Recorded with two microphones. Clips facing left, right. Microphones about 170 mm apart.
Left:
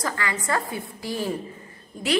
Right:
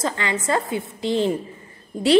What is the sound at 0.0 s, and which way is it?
A woman's voice, 25° right (ahead or behind).